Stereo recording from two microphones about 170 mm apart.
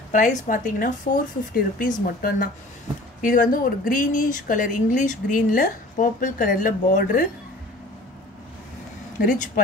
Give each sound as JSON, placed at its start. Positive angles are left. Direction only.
{"t": 0.1, "sound": "speech", "side_deg": 50}